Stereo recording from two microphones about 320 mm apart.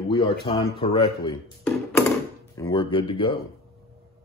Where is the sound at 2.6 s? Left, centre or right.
Centre.